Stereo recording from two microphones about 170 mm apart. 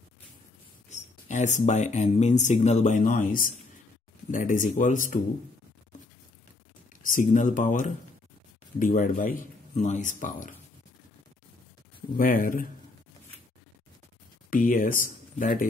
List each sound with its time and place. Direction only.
0.8 s speech: 45° left (ahead or behind)
7.0 s speech: 50° left (ahead or behind)
12.2 s speech: 55° left (ahead or behind)
14.5 s speech: 50° left (ahead or behind)